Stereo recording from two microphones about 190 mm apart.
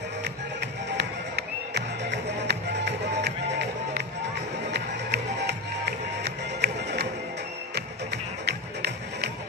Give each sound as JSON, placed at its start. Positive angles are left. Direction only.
{"t": 0.2, "sound": "music", "side_deg": -60}